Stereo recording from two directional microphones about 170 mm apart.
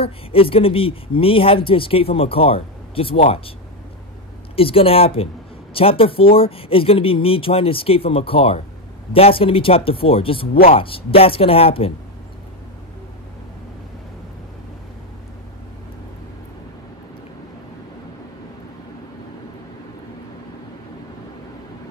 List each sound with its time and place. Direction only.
0.0 s speech: 35° left (ahead or behind)
4.6 s speech: 35° left (ahead or behind)